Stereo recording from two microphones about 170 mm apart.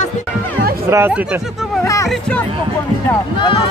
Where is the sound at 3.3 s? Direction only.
30° left (ahead or behind).